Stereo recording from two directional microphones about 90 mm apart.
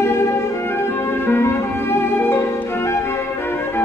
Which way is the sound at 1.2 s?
25° left (ahead or behind).